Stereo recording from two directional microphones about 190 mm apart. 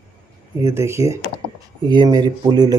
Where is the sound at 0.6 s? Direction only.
15° right (ahead or behind).